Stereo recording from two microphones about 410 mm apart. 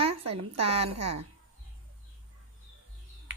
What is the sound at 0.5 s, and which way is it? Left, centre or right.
Speech, centre.